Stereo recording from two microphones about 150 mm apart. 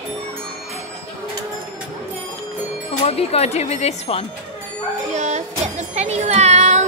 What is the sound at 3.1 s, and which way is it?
Speech, 40° left (ahead or behind).